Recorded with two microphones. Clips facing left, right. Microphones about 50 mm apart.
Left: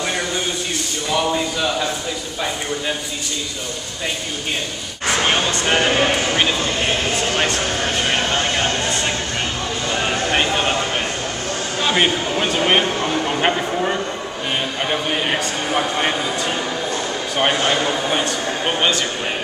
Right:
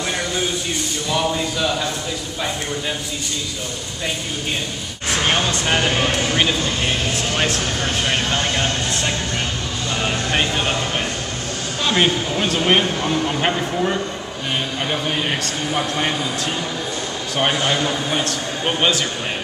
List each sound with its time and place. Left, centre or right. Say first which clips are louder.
1.1 s speech: left 2 dB; centre
5.2 s speech: even; centre
5.5 s speech: left 1 dB; centre
5.8 s speech: left 4 dB; left
7.3 s a man's voice: left 1 dB; centre
11.8 s a man's voice: even; centre
17.4 s a man's voice: left 1 dB; centre